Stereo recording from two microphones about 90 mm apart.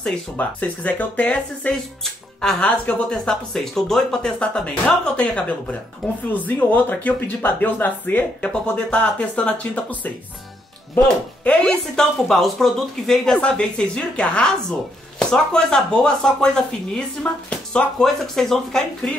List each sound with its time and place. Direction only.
0.4 s speech: 20° left (ahead or behind)
2.4 s speech: 5° left (ahead or behind)
11.4 s speech: 10° left (ahead or behind)